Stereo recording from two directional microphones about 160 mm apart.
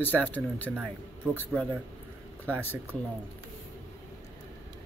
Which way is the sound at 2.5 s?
10° left (ahead or behind).